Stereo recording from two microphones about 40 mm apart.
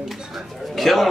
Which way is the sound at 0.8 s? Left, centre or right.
Centre.